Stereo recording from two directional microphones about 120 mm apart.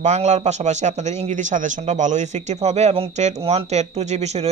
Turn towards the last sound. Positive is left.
turn(degrees=-60)  # may be behind; listen again after turning